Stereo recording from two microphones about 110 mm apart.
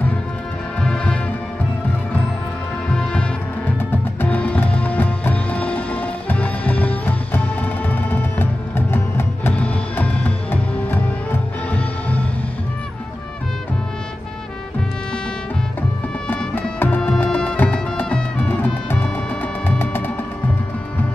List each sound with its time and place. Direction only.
0.7 s music: 10° left (ahead or behind)
2.9 s music: 10° left (ahead or behind)
16.5 s music: 15° left (ahead or behind)